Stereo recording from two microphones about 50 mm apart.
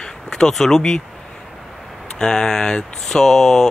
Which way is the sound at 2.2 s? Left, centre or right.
Centre.